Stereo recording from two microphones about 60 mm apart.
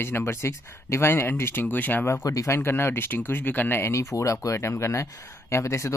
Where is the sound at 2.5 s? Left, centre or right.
Left.